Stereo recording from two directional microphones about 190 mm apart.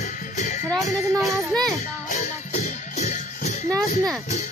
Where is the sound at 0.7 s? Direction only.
Centre (ahead or behind).